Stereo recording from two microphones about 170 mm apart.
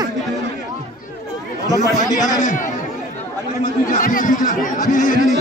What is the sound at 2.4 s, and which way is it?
Speech, 50° left (ahead or behind).